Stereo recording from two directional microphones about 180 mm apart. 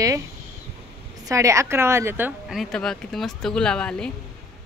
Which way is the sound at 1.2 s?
15° right (ahead or behind).